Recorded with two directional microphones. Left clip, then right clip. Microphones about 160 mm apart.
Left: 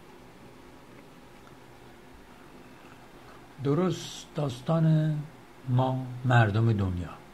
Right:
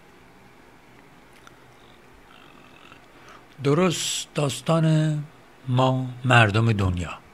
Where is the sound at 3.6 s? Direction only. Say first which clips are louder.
Right 7 dB; 30° right (ahead or behind).